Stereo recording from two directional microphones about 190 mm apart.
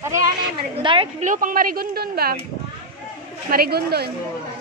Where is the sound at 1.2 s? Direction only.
45° right (ahead or behind).